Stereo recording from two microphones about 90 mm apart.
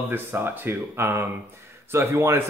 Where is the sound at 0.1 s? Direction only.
25° right (ahead or behind).